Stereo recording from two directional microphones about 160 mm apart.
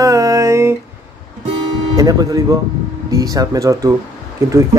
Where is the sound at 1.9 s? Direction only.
20° right (ahead or behind).